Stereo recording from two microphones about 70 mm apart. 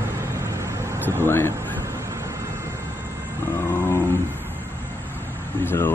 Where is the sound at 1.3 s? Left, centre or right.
Left.